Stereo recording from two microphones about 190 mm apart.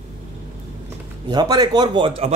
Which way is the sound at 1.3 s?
20° right (ahead or behind).